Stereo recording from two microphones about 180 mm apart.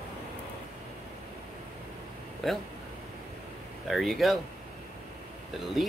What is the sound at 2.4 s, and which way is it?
Speech, centre (ahead or behind).